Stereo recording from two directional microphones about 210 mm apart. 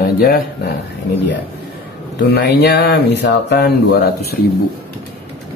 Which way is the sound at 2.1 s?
50° left (ahead or behind).